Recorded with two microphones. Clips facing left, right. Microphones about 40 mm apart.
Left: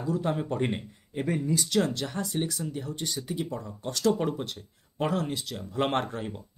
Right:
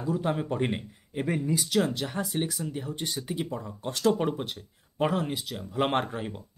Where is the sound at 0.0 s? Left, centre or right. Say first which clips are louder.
Even; centre.